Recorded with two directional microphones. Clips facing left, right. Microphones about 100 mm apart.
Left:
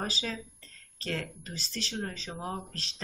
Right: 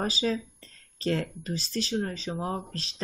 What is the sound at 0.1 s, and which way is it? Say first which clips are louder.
Speech: right 8 dB; 15° right (ahead or behind).